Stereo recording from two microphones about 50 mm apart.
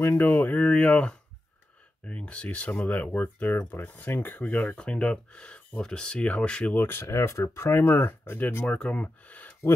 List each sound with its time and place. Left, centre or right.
0.1 s speech: left
4.6 s speech: left
6.8 s speech: left
7.1 s speech: left
8.6 s speech: left